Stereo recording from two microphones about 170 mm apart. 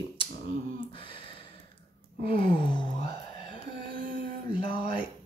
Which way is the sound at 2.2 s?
30° left (ahead or behind).